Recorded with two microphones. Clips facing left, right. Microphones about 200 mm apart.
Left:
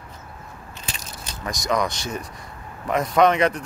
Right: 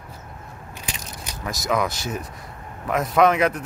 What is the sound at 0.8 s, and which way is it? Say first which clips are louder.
Crushing: right 1 dB; 15° right (ahead or behind).